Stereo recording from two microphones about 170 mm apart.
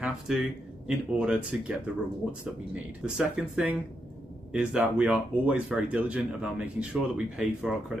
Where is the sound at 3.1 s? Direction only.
5° right (ahead or behind).